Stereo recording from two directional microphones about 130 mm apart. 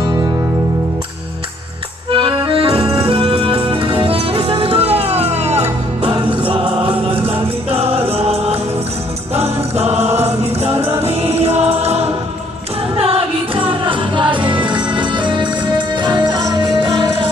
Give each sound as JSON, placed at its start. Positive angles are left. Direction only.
{"t": 2.1, "sound": "accordion", "side_deg": -40}
{"t": 4.6, "sound": "music", "side_deg": -50}